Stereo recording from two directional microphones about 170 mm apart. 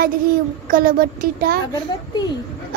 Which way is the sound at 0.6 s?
55° right (ahead or behind).